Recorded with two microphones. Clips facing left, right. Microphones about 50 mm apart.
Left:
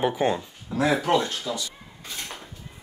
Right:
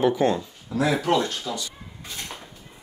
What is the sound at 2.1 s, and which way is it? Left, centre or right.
Dishes, centre.